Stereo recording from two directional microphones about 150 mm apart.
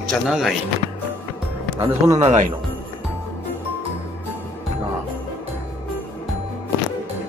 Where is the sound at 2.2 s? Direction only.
50° right (ahead or behind).